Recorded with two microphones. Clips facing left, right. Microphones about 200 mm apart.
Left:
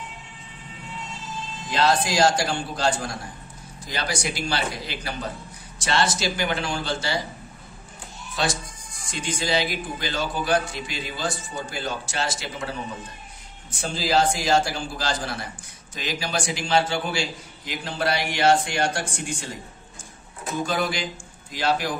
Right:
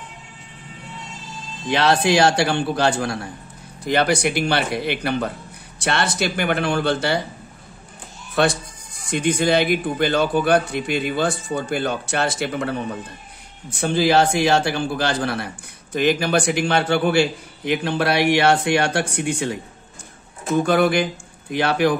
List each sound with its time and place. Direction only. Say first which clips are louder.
1.7 s a man's voice: right 5 dB; 65° right (ahead or behind)
8.4 s a man's voice: right 8 dB; 60° right (ahead or behind)